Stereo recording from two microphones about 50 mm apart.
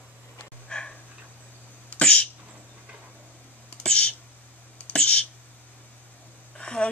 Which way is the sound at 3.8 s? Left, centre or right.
Left.